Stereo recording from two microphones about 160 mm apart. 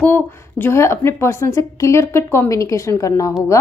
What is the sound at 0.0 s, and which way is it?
A woman's voice, 15° left (ahead or behind).